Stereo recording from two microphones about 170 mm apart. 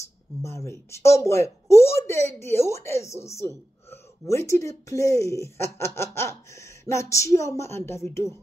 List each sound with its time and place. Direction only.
0.0 s speech: 15° left (ahead or behind)